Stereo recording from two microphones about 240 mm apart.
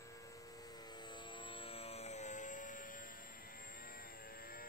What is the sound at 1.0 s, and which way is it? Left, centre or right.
Vehicle, centre.